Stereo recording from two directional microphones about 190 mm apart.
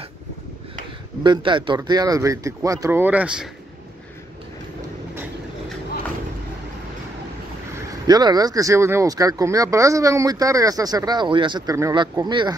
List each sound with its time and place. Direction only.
1.2 s a man's voice: 25° right (ahead or behind); by 3.4 s 5° right (ahead or behind)
7.7 s speech: 20° right (ahead or behind)